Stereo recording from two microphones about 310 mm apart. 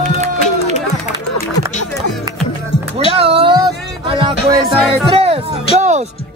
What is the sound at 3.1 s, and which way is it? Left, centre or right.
Music, centre.